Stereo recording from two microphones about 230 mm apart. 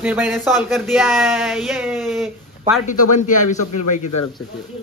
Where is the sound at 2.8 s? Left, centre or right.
Left.